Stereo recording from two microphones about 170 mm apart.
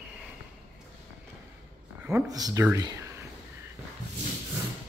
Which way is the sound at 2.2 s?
20° right (ahead or behind).